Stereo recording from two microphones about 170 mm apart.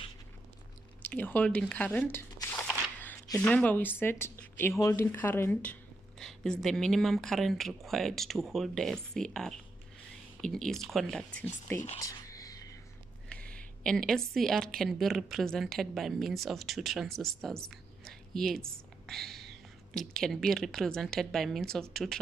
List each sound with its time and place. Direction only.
1.0 s squish: 10° left (ahead or behind)
3.3 s speech: 5° left (ahead or behind)
12.0 s whispering: 20° left (ahead or behind)
13.3 s speech: 5° left (ahead or behind)